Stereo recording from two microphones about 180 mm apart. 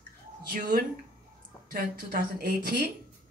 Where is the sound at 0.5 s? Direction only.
55° right (ahead or behind).